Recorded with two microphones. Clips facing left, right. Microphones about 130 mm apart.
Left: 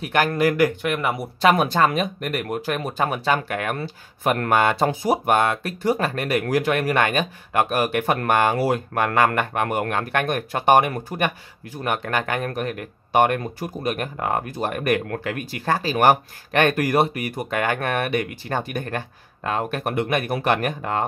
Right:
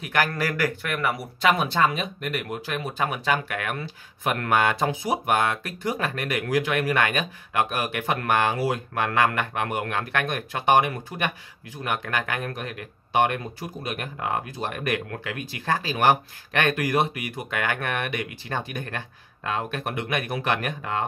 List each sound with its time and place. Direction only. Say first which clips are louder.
0.0 s a man's voice: left 5 dB; 25° left (ahead or behind)
1.6 s speech: left 4 dB; 50° left (ahead or behind)
12.5 s speech: left 7 dB; 50° left (ahead or behind)